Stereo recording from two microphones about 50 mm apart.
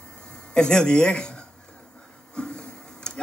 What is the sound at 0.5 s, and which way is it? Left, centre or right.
Speech, centre.